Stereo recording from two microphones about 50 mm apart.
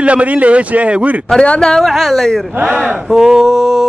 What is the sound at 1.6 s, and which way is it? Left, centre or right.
Speech, centre.